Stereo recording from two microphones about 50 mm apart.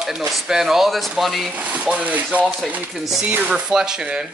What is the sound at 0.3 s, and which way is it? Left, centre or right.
Speech, centre.